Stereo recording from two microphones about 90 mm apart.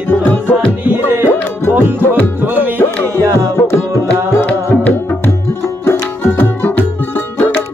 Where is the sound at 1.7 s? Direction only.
20° right (ahead or behind).